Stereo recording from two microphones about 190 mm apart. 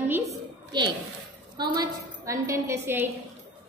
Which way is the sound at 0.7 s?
25° right (ahead or behind).